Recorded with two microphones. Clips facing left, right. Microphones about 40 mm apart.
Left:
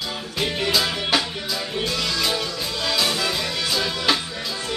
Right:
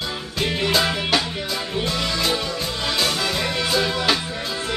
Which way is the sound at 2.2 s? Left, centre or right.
Centre.